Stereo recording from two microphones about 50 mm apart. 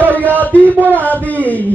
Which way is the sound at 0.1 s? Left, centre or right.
Left.